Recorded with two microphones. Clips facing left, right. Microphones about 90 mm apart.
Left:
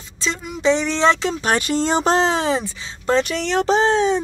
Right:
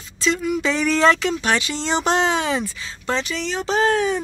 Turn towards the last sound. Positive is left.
turn(degrees=25)  # may be behind; listen again after turning